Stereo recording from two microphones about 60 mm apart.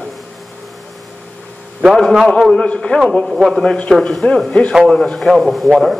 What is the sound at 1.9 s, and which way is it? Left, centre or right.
A man's voice, centre.